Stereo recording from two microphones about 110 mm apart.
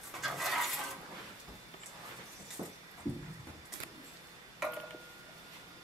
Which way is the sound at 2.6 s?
30° right (ahead or behind).